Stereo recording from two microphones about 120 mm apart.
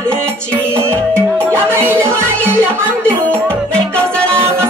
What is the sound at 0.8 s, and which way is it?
Music, 20° right (ahead or behind).